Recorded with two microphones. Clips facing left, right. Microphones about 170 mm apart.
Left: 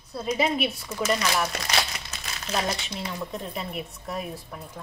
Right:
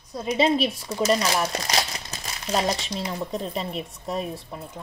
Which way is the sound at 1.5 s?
35° right (ahead or behind).